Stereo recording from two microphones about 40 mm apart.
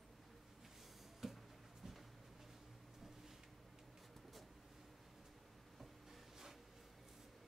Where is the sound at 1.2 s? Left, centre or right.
Centre.